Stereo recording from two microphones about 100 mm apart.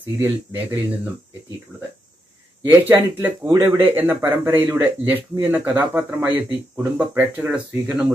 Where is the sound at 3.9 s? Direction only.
20° right (ahead or behind).